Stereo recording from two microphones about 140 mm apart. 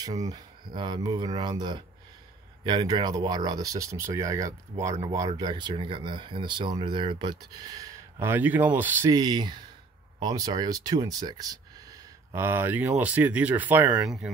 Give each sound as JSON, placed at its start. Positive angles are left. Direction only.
{"t": 0.0, "sound": "speech", "side_deg": -25}
{"t": 8.3, "sound": "speech", "side_deg": -15}
{"t": 9.1, "sound": "speech", "side_deg": -30}
{"t": 12.4, "sound": "speech", "side_deg": -15}
{"t": 14.0, "sound": "speech", "side_deg": -5}